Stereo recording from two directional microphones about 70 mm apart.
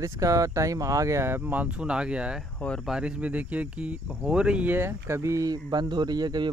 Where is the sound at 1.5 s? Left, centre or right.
Centre.